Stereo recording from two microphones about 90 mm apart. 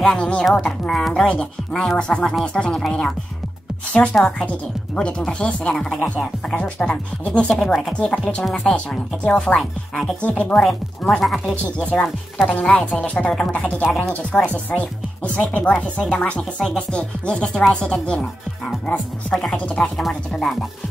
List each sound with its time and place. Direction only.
0.0 s speech: 10° left (ahead or behind)
10.2 s speech: 15° left (ahead or behind)
10.6 s speech: 5° left (ahead or behind)
12.4 s speech: 15° left (ahead or behind)
19.5 s speech: 10° left (ahead or behind)